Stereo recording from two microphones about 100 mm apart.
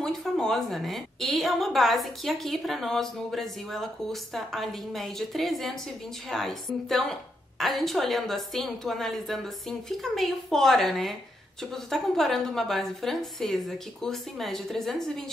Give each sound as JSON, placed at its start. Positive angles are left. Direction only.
{"t": 0.0, "sound": "a woman's voice", "side_deg": 5}